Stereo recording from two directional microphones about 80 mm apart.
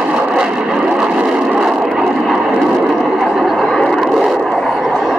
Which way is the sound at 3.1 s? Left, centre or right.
Centre.